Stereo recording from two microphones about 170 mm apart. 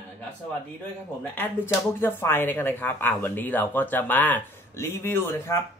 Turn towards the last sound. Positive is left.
turn(degrees=15)  # may be behind; listen again after turning